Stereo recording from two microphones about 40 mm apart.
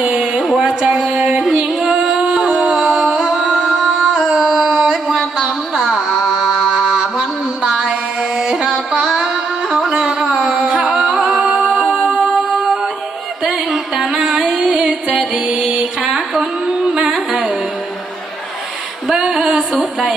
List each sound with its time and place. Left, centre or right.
0.0 s a sound: right
0.7 s a sound: centre
1.8 s singing: centre
2.7 s music: centre
4.3 s a sound: centre
6.0 s mantra: centre
8.4 s music: centre
9.9 s carnatic music: centre
10.4 s music: centre
11.7 s music: centre
16.1 s carnatic music: centre
19.1 s a sound: centre